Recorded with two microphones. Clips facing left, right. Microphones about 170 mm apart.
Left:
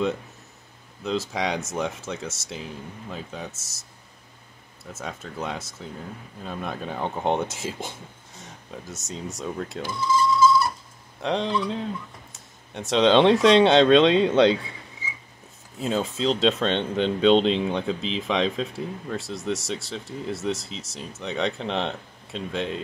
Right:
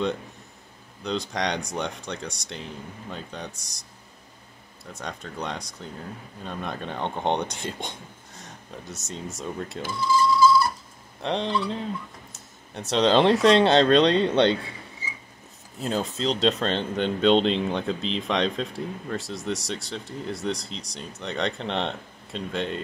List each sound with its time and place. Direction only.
1.0 s speech: 5° left (ahead or behind)
4.9 s speech: 5° left (ahead or behind)
9.9 s speech: 20° left (ahead or behind)
11.1 s speech: centre (ahead or behind)
15.8 s speech: centre (ahead or behind)